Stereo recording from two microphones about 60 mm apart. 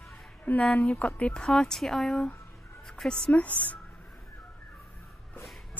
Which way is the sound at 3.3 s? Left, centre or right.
Left.